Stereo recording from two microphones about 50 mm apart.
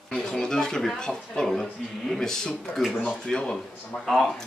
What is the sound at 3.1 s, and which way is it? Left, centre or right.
Speech, centre.